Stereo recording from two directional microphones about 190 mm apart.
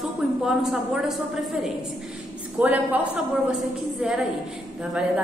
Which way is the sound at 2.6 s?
10° right (ahead or behind).